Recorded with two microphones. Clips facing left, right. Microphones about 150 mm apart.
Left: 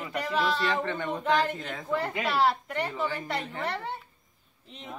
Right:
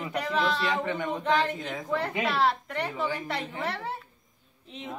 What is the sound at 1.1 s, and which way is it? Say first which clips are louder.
A woman's voice: left 1 dB; centre (ahead or behind).